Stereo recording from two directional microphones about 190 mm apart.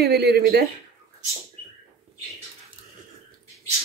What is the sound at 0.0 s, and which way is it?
Speech, 55° right (ahead or behind).